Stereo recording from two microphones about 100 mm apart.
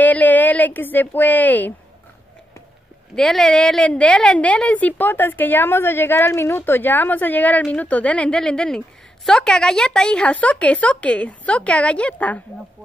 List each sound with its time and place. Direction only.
0.0 s a woman's voice: 15° left (ahead or behind)
3.2 s a woman's voice: 5° left (ahead or behind)